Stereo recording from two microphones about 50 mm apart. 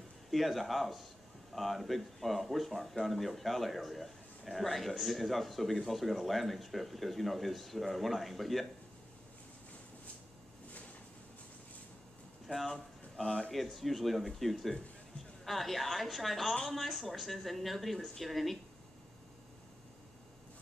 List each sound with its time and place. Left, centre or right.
0.3 s speech: centre
12.5 s speech: centre